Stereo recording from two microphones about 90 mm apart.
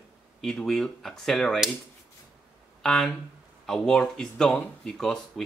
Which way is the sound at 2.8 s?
5° left (ahead or behind).